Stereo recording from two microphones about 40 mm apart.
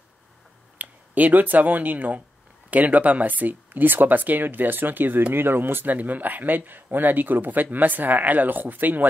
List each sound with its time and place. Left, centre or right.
0.7 s speech: right